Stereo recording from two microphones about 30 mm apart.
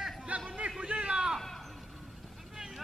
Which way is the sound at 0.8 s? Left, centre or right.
Right.